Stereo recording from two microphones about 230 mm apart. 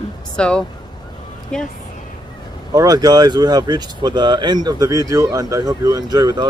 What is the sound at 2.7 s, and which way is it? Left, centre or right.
Speech, centre.